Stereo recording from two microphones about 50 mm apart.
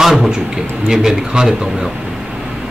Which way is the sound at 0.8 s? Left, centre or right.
Centre.